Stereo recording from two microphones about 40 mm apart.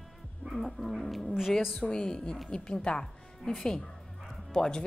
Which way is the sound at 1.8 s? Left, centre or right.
Centre.